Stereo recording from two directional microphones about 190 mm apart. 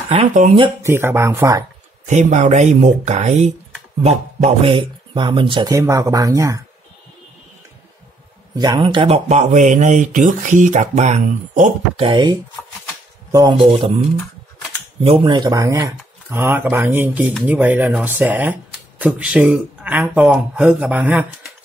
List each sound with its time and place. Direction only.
0.3 s speech: 40° right (ahead or behind)
0.8 s speech: 15° right (ahead or behind)
2.0 s speech: 40° right (ahead or behind); by 6.6 s 15° right (ahead or behind)
8.5 s speech: 25° right (ahead or behind)
12.1 s speech: 25° right (ahead or behind)
13.7 s speech: 30° right (ahead or behind)
15.0 s speech: 25° right (ahead or behind); by 21.5 s 5° right (ahead or behind)